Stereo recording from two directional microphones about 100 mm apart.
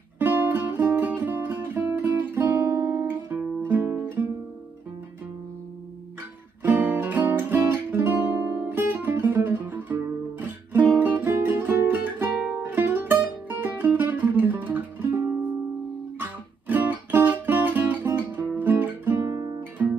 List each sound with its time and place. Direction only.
0.2 s music: 20° right (ahead or behind)
6.6 s music: 15° right (ahead or behind)